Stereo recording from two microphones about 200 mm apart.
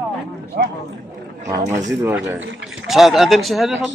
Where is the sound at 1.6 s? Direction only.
35° right (ahead or behind).